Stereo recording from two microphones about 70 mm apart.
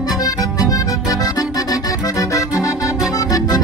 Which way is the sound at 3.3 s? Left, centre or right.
Left.